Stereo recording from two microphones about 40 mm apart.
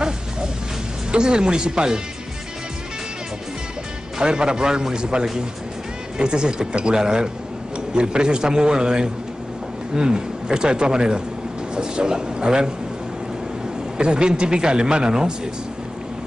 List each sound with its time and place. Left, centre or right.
1.1 s speech: right
4.2 s speech: centre
13.9 s speech: right